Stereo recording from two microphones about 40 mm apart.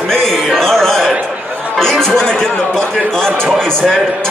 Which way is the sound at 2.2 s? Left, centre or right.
Centre.